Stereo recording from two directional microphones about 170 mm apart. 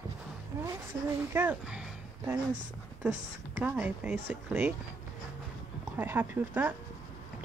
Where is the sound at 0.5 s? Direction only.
15° right (ahead or behind).